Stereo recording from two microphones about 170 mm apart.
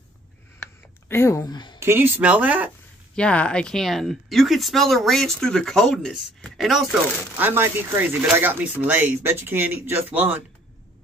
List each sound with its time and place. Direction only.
1.0 s speech: 15° left (ahead or behind)
1.8 s speech: 15° right (ahead or behind)
3.2 s speech: 5° left (ahead or behind)
7.3 s speech: 10° right (ahead or behind)